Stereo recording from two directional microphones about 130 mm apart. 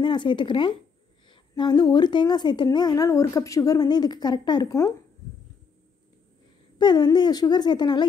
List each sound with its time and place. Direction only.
0.0 s speech: 35° left (ahead or behind)
6.8 s speech: 35° left (ahead or behind)